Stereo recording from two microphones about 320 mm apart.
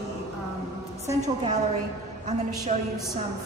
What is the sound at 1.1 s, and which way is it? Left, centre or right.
Speech, right.